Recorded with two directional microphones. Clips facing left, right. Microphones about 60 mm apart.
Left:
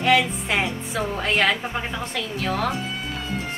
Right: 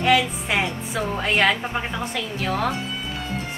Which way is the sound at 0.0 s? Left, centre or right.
Centre.